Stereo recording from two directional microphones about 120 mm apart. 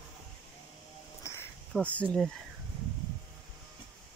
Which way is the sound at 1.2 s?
20° left (ahead or behind).